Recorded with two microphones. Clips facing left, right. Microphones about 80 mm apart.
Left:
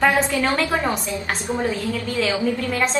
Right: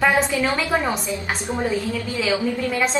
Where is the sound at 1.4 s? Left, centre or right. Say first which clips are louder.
Even; right.